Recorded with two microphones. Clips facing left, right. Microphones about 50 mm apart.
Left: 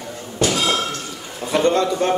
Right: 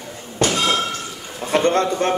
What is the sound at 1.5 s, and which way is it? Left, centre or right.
Speech, right.